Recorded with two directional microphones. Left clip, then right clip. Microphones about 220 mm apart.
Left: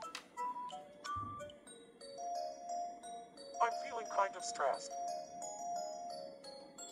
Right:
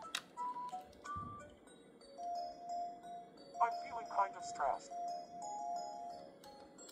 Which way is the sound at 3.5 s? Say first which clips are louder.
Left 1 dB; 30° left (ahead or behind).